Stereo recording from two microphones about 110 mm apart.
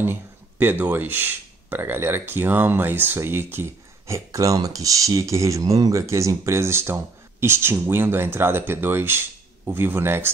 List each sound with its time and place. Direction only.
0.0 s speech: 20° right (ahead or behind)